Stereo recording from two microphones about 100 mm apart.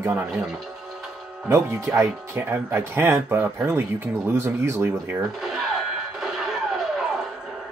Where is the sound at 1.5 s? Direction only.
25° right (ahead or behind).